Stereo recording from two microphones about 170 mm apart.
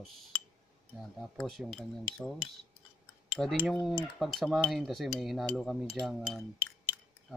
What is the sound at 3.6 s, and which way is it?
Speech, centre (ahead or behind).